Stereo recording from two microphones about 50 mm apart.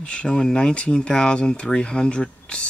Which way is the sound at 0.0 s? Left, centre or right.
Centre.